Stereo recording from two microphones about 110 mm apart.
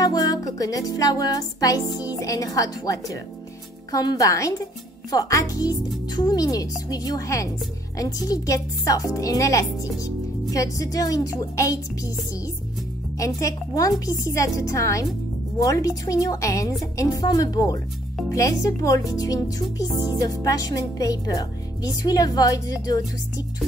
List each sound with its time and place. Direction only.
0.0 s music: 35° left (ahead or behind)
8.8 s speech: 30° left (ahead or behind)
10.5 s music: 30° left (ahead or behind)
13.2 s music: 30° left (ahead or behind)